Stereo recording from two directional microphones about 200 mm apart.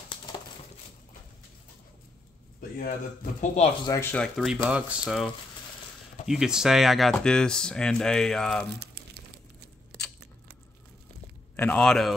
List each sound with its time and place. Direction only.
2.8 s speech: 50° left (ahead or behind)
3.8 s speech: 15° left (ahead or behind)
9.0 s crumpling: 50° right (ahead or behind)
11.5 s a man's voice: 10° left (ahead or behind)